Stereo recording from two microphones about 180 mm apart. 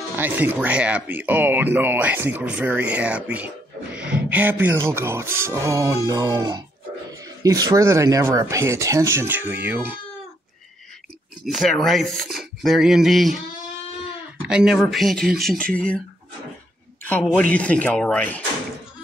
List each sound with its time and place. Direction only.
0.1 s speech: 10° right (ahead or behind)
11.4 s speech: centre (ahead or behind)
14.5 s speech: 5° right (ahead or behind)
17.1 s speech: 5° left (ahead or behind)